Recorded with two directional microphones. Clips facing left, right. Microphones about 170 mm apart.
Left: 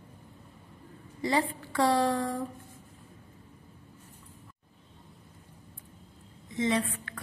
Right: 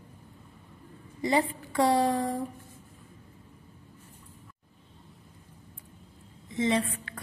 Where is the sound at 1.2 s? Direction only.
20° right (ahead or behind).